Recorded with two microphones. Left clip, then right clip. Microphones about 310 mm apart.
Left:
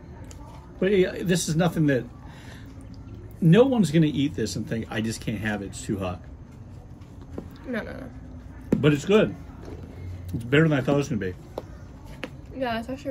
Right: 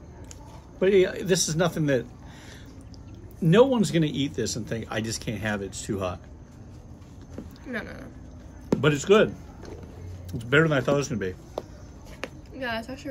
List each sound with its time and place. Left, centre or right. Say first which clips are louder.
0.7 s speech: right 1 dB; centre
3.4 s speech: even; centre
7.6 s speech: left 2 dB; centre
8.6 s a man's voice: right 1 dB; centre
10.4 s speech: even; centre
12.5 s speech: left 3 dB; centre